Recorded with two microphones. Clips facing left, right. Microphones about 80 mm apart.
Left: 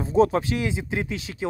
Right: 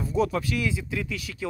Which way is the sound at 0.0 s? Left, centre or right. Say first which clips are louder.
Left 6 dB; left.